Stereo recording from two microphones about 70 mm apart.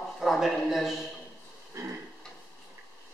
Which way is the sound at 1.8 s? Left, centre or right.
Right.